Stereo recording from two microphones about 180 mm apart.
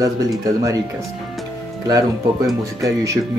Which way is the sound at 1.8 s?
20° right (ahead or behind).